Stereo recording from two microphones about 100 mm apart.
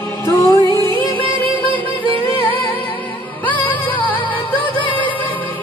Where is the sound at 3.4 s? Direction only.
15° left (ahead or behind).